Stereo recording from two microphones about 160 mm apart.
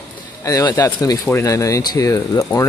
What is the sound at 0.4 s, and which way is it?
Speech, 20° left (ahead or behind).